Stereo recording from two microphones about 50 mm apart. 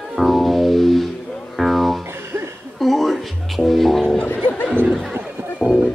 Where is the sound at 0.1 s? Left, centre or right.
Centre.